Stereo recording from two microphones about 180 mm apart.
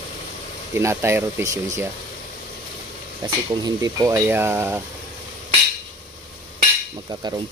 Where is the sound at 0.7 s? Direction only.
15° right (ahead or behind).